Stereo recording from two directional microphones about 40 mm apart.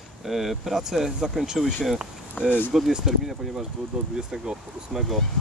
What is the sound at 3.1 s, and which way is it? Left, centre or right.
Speech, centre.